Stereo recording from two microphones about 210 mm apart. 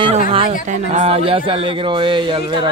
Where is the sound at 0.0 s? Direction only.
25° right (ahead or behind).